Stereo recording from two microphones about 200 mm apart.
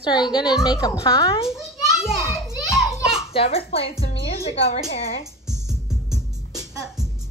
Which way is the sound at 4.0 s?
30° left (ahead or behind).